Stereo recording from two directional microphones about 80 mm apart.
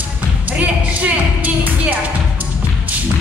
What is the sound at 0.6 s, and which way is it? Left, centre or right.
Music, centre.